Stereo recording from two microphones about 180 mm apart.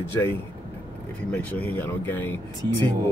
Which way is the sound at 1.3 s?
10° left (ahead or behind).